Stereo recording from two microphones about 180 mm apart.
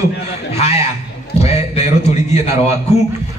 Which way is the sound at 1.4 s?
35° left (ahead or behind).